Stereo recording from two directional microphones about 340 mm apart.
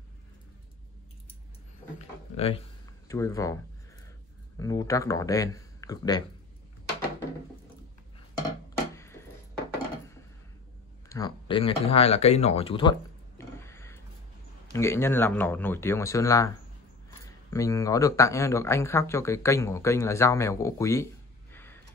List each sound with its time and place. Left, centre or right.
2.3 s speech: centre
4.6 s speech: centre
8.9 s a sound: centre
11.1 s speech: centre
13.4 s a sound: centre
14.7 s speech: centre